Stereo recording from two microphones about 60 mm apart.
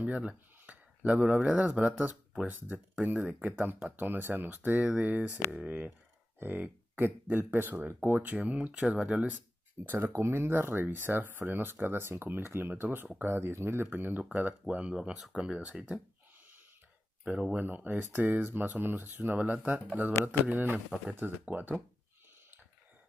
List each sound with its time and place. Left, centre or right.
0.0 s speech: right
8.4 s speech: right
9.8 s speech: right
13.8 s speech: right
17.2 s speech: right